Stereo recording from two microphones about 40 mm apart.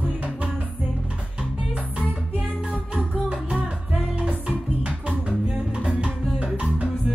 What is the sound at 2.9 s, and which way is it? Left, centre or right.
Music, right.